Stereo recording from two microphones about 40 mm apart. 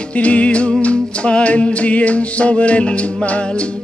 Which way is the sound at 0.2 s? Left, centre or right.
Left.